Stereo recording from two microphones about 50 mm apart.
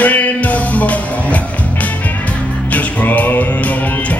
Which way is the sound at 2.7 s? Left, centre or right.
Left.